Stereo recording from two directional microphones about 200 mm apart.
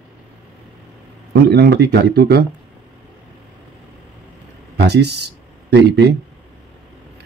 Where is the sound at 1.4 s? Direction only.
55° right (ahead or behind).